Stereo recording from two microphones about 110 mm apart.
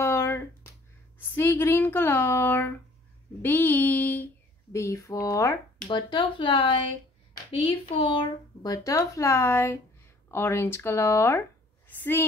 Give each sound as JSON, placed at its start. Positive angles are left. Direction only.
{"t": 0.0, "sound": "finger snapping", "side_deg": 25}
{"t": 1.1, "sound": "speech", "side_deg": 20}
{"t": 3.4, "sound": "a sound", "side_deg": 20}
{"t": 4.7, "sound": "speech", "side_deg": 25}
{"t": 5.9, "sound": "speech", "side_deg": 45}
{"t": 8.6, "sound": "a woman's voice", "side_deg": 30}